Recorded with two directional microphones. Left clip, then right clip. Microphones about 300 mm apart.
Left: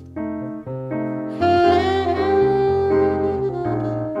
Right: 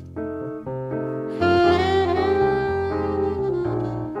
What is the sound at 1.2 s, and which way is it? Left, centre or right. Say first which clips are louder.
Saxophone: left 2 dB; centre.